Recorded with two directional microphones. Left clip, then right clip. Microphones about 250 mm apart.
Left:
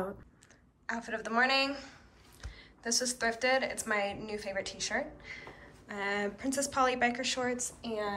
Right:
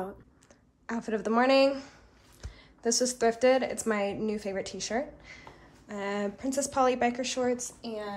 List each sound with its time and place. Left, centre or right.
0.8 s a woman's voice: right